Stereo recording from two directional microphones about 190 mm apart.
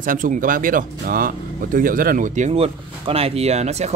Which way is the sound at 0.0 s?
45° right (ahead or behind).